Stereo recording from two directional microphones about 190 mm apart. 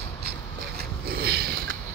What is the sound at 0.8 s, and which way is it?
Sniff, 55° right (ahead or behind).